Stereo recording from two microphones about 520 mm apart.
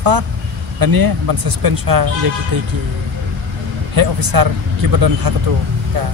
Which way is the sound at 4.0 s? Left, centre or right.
Right.